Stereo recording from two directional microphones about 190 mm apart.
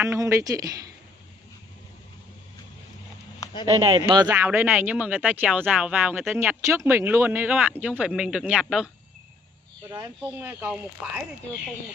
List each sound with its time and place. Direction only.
0.0 s speech: 15° right (ahead or behind)
3.8 s speech: 25° right (ahead or behind)
4.3 s speech: 10° right (ahead or behind)
9.8 s speech: 15° right (ahead or behind)